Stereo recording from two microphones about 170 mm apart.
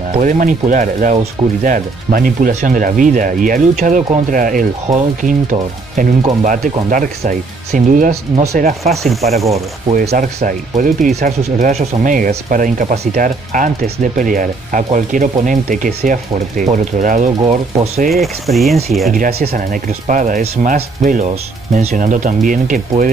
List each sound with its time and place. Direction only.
0.1 s speech: 50° right (ahead or behind)
9.0 s speech: centre (ahead or behind)
10.1 s speech: 50° right (ahead or behind)
18.1 s speech: centre (ahead or behind)
19.1 s speech: 55° right (ahead or behind)